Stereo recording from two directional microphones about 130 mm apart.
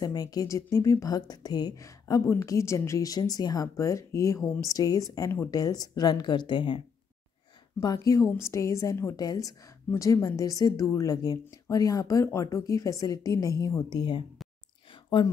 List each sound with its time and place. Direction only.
0.0 s a woman's voice: 30° left (ahead or behind)
7.8 s a woman's voice: 25° left (ahead or behind)
13.8 s speech: 35° left (ahead or behind)